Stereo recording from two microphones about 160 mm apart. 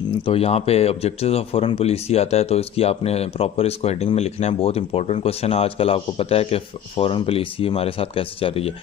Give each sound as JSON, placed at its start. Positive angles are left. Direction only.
{"t": 0.2, "sound": "speech", "side_deg": 35}